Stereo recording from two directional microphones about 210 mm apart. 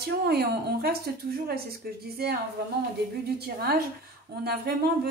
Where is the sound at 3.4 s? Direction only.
45° right (ahead or behind).